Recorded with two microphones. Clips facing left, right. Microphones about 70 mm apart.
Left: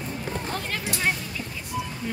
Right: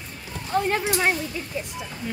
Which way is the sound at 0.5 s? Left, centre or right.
Right.